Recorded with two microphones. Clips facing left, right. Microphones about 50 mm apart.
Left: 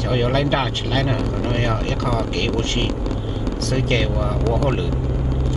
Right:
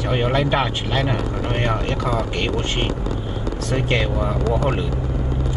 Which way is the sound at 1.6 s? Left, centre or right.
Right.